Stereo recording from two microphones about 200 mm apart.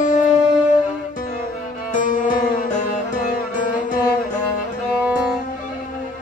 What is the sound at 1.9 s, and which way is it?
Music, 40° left (ahead or behind).